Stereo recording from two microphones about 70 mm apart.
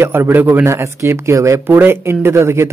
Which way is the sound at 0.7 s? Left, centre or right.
Right.